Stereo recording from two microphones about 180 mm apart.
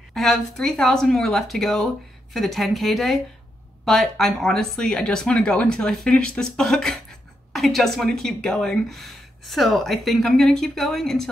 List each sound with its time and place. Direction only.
0.1 s speech: centre (ahead or behind)